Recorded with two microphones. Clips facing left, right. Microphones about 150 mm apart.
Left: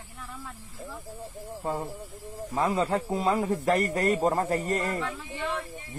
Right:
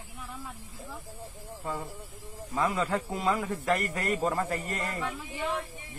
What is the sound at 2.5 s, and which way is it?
Speech, 30° left (ahead or behind).